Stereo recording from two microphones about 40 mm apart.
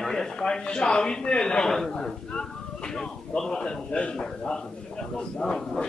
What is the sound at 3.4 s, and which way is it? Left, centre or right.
Speech, centre.